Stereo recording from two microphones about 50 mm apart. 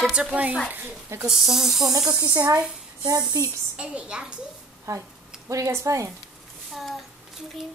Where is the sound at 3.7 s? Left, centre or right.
Right.